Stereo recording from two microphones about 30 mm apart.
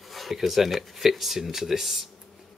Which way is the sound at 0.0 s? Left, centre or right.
Centre.